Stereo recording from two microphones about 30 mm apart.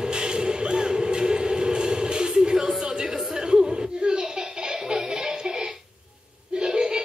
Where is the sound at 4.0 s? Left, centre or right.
Right.